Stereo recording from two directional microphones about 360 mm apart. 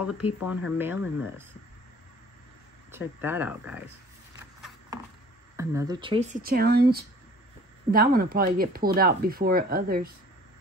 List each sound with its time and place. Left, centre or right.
0.4 s speech: centre
2.9 s speech: centre
4.6 s clip-clop: centre
5.6 s speech: centre; by 10.0 s right